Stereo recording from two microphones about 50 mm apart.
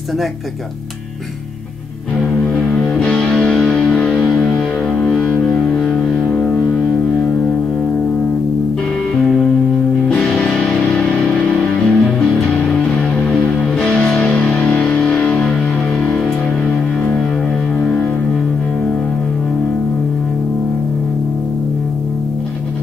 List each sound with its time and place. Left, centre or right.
2.4 s music: left
5.8 s a sound: centre
6.3 s music: centre
9.1 s music: centre
13.7 s music: centre